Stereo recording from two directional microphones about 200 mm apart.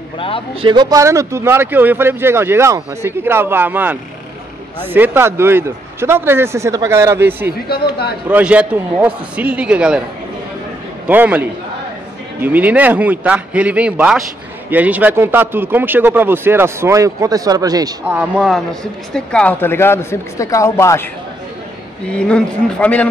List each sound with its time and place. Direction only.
0.6 s speech: 20° right (ahead or behind)
7.6 s speech: 50° left (ahead or behind)
8.3 s a man's voice: 5° right (ahead or behind)
11.1 s speech: 10° right (ahead or behind)
18.1 s speech: 5° right (ahead or behind); by 21.1 s 15° left (ahead or behind)
22.1 s speech: 5° left (ahead or behind)